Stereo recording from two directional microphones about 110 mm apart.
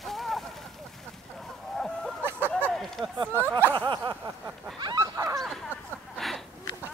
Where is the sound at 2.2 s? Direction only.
20° right (ahead or behind).